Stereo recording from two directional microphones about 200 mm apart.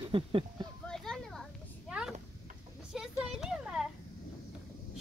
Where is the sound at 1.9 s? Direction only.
5° right (ahead or behind).